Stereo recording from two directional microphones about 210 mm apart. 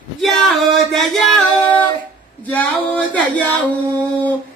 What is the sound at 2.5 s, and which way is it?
Speech, 5° left (ahead or behind).